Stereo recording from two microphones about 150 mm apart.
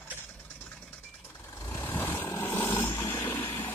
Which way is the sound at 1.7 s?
15° left (ahead or behind).